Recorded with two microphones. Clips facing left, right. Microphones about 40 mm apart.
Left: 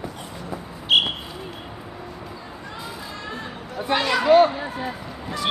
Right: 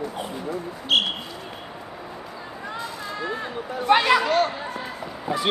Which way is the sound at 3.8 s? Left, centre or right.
Centre.